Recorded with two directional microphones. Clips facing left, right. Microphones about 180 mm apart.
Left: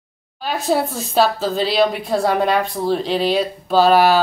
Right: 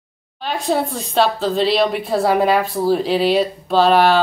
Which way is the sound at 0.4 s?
5° left (ahead or behind).